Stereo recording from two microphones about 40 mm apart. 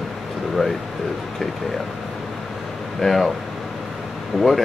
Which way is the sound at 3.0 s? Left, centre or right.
Centre.